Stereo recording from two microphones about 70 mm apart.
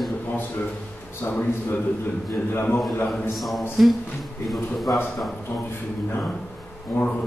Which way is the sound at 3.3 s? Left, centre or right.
Centre.